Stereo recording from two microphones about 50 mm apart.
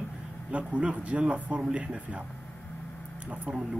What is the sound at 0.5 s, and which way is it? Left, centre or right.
Speech, right.